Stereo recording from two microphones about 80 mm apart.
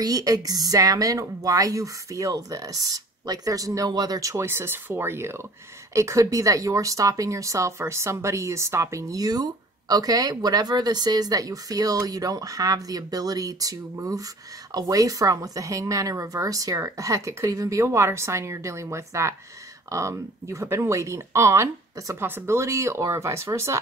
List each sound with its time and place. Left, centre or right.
0.0 s speech: right
4.3 s speech: right
22.2 s speech: right